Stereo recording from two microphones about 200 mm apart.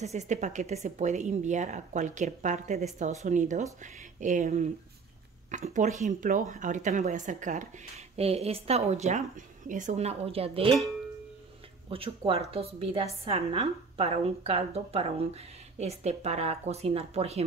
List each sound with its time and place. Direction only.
0.0 s a woman's voice: 35° right (ahead or behind)
11.9 s a woman's voice: 30° right (ahead or behind)